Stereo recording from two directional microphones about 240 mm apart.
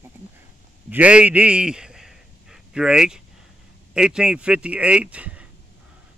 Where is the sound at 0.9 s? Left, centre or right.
Centre.